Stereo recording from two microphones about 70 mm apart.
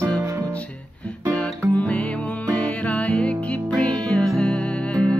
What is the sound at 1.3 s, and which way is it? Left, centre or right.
Music, centre.